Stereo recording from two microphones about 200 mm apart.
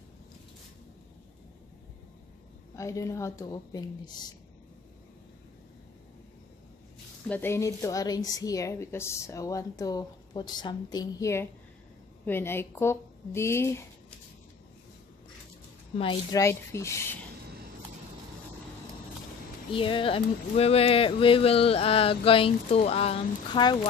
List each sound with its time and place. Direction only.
2.7 s a woman's voice: 15° left (ahead or behind)
7.2 s a woman's voice: 10° left (ahead or behind)
16.0 s speech: 25° left (ahead or behind)
16.3 s a woman's voice: 15° left (ahead or behind)
19.7 s speech: 25° left (ahead or behind)